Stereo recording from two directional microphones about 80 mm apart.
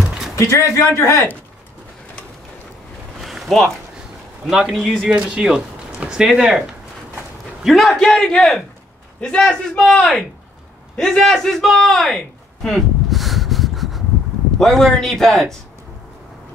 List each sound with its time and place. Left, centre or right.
0.4 s a man's voice: left
3.2 s a sound: centre
4.5 s a man's voice: centre
5.0 s a man's voice: centre
12.6 s a sound: centre
14.6 s a man's voice: centre